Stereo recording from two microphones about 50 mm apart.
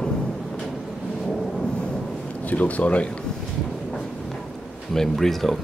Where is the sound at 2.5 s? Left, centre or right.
Left.